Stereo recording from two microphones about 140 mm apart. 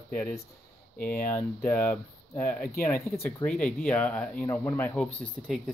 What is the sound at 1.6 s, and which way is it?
Speech, 10° left (ahead or behind).